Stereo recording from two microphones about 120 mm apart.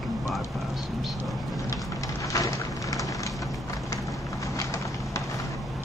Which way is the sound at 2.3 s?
30° left (ahead or behind).